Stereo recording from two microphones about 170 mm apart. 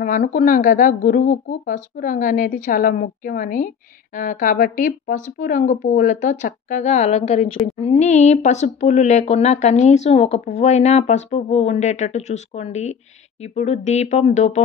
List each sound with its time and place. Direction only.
0.0 s speech: 50° left (ahead or behind)